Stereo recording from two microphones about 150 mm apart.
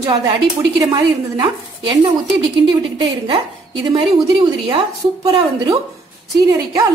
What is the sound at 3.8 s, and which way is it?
A woman's voice, 35° right (ahead or behind).